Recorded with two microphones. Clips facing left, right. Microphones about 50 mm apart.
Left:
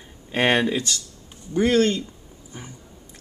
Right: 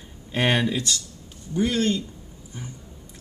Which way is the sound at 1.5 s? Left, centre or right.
Left.